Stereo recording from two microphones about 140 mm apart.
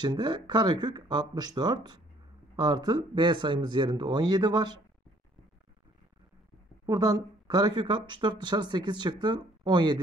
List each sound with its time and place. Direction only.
0.0 s speech: 30° right (ahead or behind)
6.9 s speech: 30° right (ahead or behind)